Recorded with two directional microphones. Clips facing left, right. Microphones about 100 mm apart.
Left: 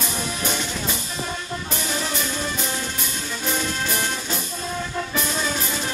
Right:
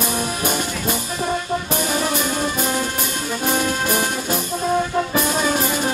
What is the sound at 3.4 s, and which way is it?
Music, 50° right (ahead or behind).